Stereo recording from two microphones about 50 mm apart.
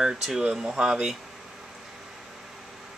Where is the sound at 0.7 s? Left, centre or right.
Right.